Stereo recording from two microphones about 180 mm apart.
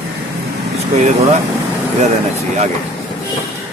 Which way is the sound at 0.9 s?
40° right (ahead or behind).